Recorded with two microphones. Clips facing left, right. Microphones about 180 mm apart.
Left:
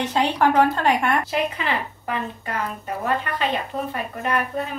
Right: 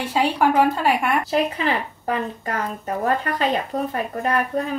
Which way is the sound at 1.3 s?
35° right (ahead or behind).